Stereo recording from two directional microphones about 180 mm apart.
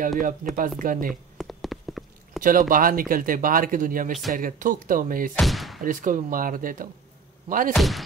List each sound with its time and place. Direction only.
0.2 s speech: 50° right (ahead or behind)
1.4 s a sound: centre (ahead or behind)
2.7 s speech: 50° right (ahead or behind)
5.4 s speech: centre (ahead or behind)
5.8 s speech: 50° right (ahead or behind)
7.7 s speech: centre (ahead or behind)